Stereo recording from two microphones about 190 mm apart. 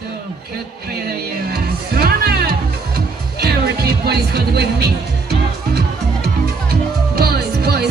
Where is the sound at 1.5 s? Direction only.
55° right (ahead or behind).